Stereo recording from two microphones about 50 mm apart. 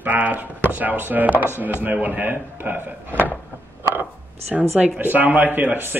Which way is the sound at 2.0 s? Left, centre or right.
Right.